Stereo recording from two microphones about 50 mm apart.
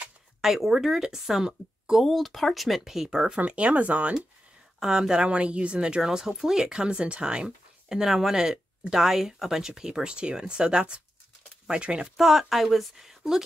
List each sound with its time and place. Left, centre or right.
0.4 s speech: centre
2.0 s speech: centre
3.3 s speech: right
4.7 s speech: centre
12.2 s speech: centre